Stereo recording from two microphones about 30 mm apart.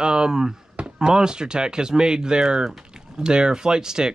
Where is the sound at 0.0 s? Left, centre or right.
Right.